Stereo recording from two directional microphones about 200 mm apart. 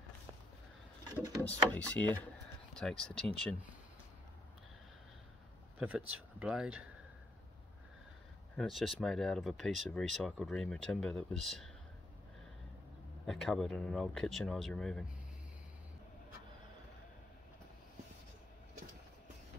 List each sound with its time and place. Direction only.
1.0 s drawer open or close: 15° right (ahead or behind)
1.5 s speech: 10° left (ahead or behind)
5.8 s speech: 5° right (ahead or behind)
8.5 s speech: centre (ahead or behind)
13.3 s speech: centre (ahead or behind)